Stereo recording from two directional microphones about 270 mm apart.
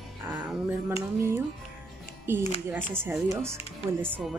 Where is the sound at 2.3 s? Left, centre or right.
Centre.